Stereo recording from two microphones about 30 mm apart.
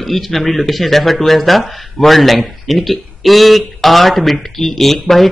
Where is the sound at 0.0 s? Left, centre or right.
Centre.